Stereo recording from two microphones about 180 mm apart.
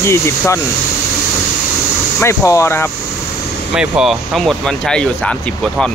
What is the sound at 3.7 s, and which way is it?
Speech, 5° right (ahead or behind).